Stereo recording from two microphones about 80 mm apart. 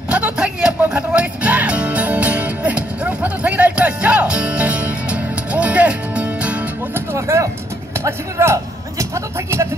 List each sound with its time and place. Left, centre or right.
0.1 s music: centre
7.2 s vehicle: right
8.0 s a sound: right